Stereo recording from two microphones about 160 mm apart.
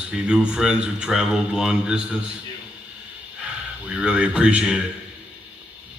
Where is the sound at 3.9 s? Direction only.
5° right (ahead or behind).